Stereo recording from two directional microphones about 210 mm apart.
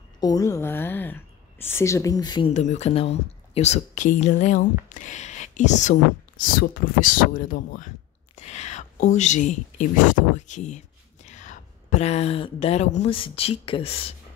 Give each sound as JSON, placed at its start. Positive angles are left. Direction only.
{"t": 0.2, "sound": "speech", "side_deg": 15}
{"t": 2.5, "sound": "a woman's voice", "side_deg": 35}